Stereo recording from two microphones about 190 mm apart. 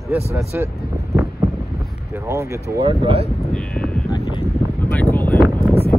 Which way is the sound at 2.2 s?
15° right (ahead or behind).